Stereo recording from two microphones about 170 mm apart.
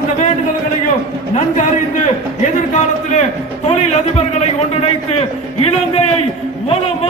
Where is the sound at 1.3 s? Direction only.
45° left (ahead or behind).